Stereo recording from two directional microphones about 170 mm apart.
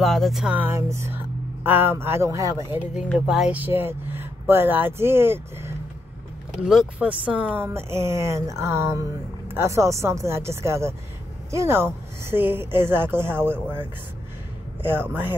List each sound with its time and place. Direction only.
0.0 s speech: centre (ahead or behind); by 2.8 s 20° right (ahead or behind)
3.1 s speech: 5° right (ahead or behind)
6.6 s speech: 5° right (ahead or behind)